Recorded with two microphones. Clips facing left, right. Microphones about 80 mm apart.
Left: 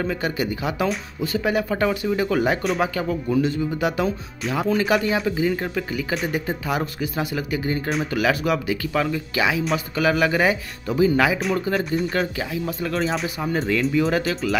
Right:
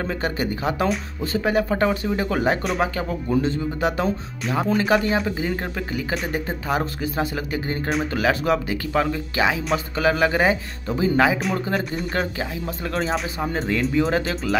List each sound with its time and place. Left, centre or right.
0.0 s speech: right